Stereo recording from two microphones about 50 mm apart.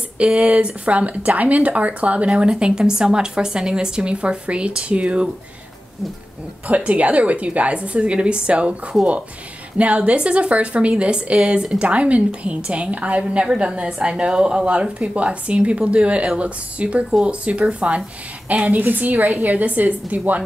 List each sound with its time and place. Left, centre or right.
0.2 s speech: right
6.7 s a woman's voice: right